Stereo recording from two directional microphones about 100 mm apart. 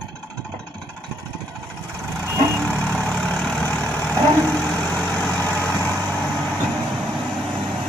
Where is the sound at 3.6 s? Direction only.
15° left (ahead or behind).